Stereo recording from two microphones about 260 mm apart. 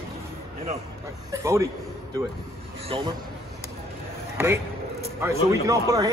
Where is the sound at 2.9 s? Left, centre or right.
Centre.